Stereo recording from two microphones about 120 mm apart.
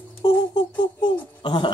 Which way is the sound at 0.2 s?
35° left (ahead or behind).